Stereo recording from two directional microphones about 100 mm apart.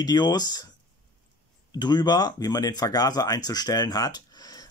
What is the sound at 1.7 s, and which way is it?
Speech, 45° left (ahead or behind).